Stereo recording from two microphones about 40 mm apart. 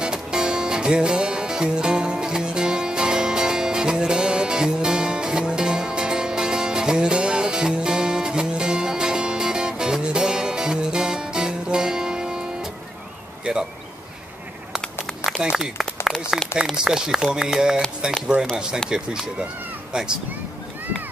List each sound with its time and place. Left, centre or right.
0.0 s music: centre
13.5 s a sound: right
15.4 s a sound: right
16.7 s speech: centre
18.3 s speech: right
18.9 s speech: centre